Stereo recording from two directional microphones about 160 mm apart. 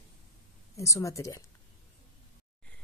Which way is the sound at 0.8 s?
20° left (ahead or behind).